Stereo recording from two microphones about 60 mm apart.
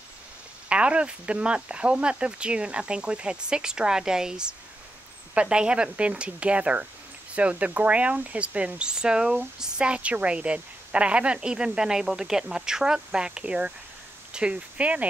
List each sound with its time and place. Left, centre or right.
0.7 s a woman's voice: centre